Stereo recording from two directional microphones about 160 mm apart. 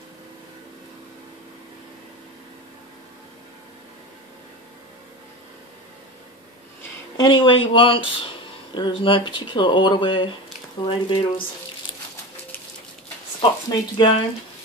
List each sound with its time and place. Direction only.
7.2 s speech: 30° left (ahead or behind)
13.4 s speech: 30° left (ahead or behind)